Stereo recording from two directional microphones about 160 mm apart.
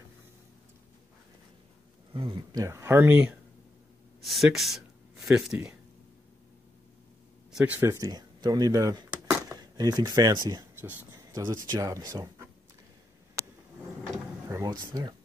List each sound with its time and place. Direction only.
2.1 s speech: 30° right (ahead or behind); by 3.3 s 10° right (ahead or behind)
4.2 s speech: centre (ahead or behind)
7.5 s speech: 10° right (ahead or behind)
7.9 s speech: 25° right (ahead or behind)
13.4 s a sound: 20° right (ahead or behind)
14.5 s speech: 25° right (ahead or behind)